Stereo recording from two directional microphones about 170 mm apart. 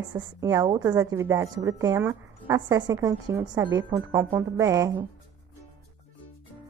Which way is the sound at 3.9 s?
10° right (ahead or behind).